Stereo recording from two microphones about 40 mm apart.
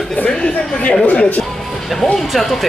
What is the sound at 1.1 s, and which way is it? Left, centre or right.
Speech, left.